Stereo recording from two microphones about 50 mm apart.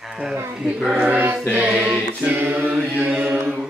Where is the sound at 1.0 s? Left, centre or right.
Right.